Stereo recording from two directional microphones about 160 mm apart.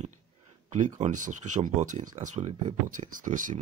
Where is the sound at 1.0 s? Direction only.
55° right (ahead or behind).